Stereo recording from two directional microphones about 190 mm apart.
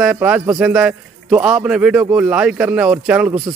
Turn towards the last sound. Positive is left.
turn(degrees=-5)  # may be behind; listen again after turning